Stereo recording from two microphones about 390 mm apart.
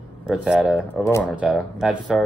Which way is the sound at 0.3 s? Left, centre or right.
Centre.